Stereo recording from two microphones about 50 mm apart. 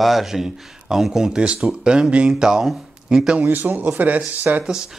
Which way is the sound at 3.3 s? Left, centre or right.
Right.